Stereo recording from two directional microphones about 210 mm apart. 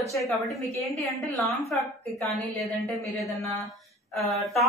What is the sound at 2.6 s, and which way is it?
A woman's voice, centre (ahead or behind).